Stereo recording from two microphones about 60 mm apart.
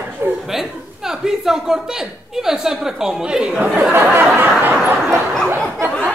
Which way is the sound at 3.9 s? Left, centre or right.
Right.